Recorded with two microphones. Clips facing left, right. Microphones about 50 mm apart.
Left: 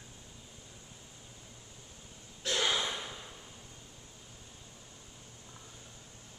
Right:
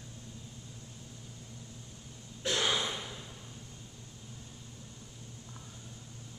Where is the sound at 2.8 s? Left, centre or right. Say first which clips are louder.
Even; centre.